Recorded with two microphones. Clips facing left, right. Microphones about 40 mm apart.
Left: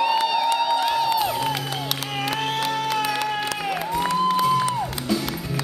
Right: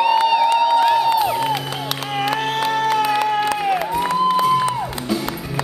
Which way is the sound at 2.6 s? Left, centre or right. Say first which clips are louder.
Right 9 dB; centre.